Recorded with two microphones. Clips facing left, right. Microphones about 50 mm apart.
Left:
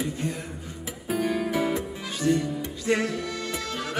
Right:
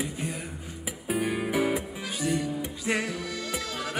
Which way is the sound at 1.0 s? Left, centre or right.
Centre.